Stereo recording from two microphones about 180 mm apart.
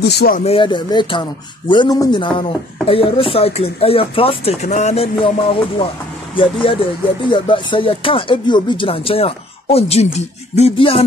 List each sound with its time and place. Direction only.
0.1 s speech: 65° left (ahead or behind)
0.4 s speech: 30° left (ahead or behind)